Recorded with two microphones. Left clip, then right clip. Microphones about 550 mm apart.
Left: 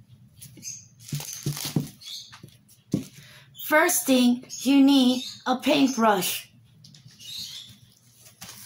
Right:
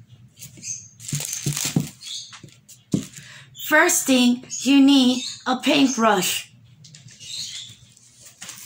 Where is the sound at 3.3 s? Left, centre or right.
Left.